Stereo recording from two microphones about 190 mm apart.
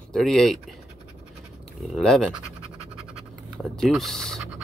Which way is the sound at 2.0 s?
5° left (ahead or behind).